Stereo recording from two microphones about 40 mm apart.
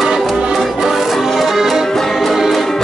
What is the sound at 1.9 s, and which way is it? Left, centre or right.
Music, centre.